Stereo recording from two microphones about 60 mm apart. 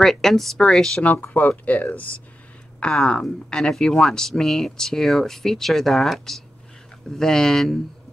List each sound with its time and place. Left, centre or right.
0.0 s speech: centre
1.0 s speech: left
2.8 s speech: centre